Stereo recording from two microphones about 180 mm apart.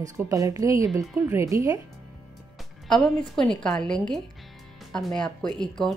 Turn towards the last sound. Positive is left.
turn(degrees=5)  # may be behind; listen again after turning